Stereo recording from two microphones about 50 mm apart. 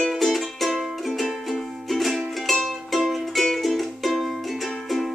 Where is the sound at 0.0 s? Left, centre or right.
Centre.